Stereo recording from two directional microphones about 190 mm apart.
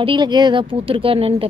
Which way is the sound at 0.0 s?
25° right (ahead or behind).